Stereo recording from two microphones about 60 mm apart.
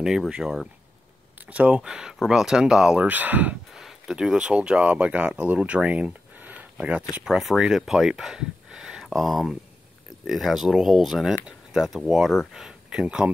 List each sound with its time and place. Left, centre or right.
0.4 s speech: centre
1.5 s speech: right
1.8 s speech: centre
3.1 s speech: right
3.7 s speech: centre
7.2 s speech: centre
12.6 s speech: centre